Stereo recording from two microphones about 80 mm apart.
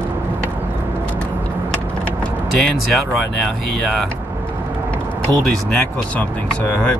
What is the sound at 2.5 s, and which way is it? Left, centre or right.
Speech, centre.